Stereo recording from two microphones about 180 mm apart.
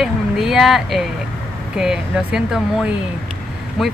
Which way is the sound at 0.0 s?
Centre (ahead or behind).